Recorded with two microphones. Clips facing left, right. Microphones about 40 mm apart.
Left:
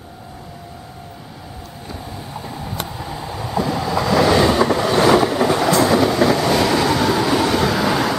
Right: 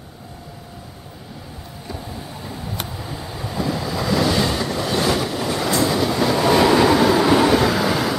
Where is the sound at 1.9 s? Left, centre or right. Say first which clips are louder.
Left 1 dB; centre.